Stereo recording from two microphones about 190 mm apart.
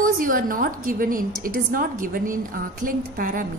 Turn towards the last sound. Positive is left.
turn(degrees=-45)  # may be behind; listen again after turning